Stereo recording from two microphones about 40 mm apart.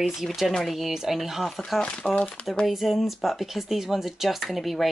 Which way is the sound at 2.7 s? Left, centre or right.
Centre.